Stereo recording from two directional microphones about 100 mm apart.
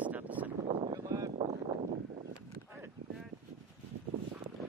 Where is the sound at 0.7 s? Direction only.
75° right (ahead or behind).